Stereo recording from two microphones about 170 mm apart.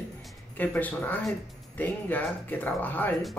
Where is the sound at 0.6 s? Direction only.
10° left (ahead or behind).